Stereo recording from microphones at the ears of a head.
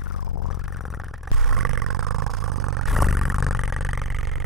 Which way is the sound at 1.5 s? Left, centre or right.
Right.